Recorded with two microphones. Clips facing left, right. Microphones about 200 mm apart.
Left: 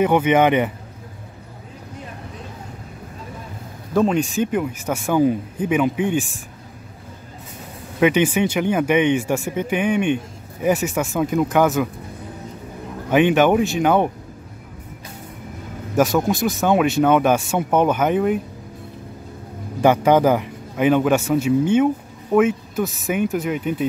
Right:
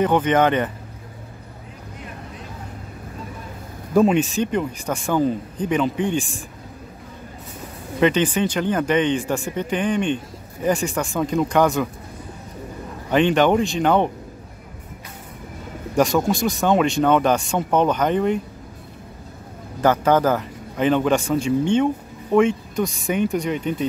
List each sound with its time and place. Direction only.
0.0 s a man's voice: 10° left (ahead or behind)
3.9 s speech: 5° right (ahead or behind)
8.0 s a man's voice: 10° left (ahead or behind)
13.1 s a man's voice: 10° left (ahead or behind)
16.3 s a man's voice: centre (ahead or behind)
19.8 s a man's voice: 15° left (ahead or behind)